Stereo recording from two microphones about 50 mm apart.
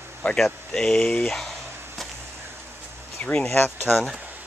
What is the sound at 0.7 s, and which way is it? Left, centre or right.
Speech, centre.